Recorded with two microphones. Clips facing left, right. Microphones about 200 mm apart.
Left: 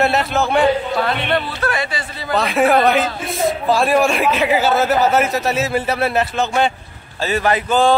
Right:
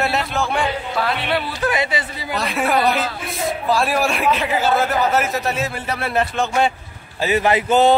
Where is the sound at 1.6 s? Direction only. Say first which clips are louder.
Right 1 dB; 20° right (ahead or behind).